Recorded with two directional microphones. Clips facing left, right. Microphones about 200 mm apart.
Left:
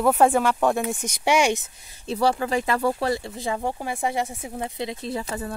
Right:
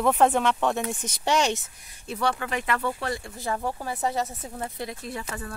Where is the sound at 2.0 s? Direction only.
30° left (ahead or behind).